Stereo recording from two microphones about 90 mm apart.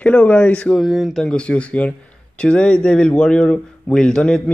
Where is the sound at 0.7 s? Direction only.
Centre (ahead or behind).